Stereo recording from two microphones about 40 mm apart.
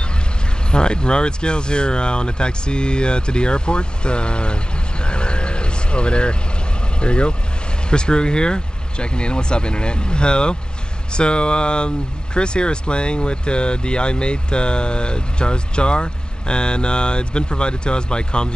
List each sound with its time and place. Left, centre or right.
0.7 s speech: left
5.0 s vehicle: left
7.0 s speech: left